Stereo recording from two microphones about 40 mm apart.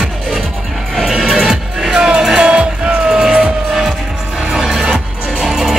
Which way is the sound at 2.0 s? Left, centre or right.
Right.